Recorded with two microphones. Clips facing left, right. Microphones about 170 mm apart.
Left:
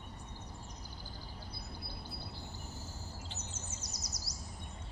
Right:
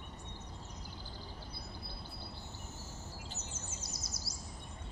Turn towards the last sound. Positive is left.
turn(degrees=-25)  # may be behind; listen again after turning